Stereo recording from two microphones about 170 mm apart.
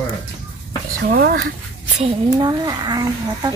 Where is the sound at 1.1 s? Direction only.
65° right (ahead or behind).